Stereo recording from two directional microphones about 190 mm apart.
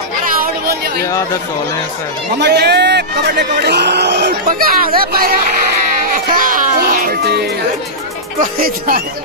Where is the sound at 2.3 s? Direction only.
60° right (ahead or behind).